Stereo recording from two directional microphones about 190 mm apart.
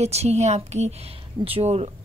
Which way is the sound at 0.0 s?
35° right (ahead or behind).